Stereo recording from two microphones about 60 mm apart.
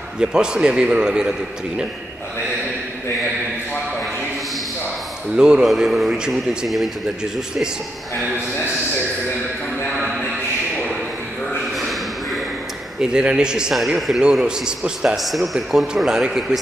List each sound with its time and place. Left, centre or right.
0.2 s a man's voice: centre
5.3 s a man's voice: centre
5.7 s a man's voice: centre
11.7 s a sound: centre
13.0 s a man's voice: centre
13.8 s a man's voice: centre
15.2 s a man's voice: centre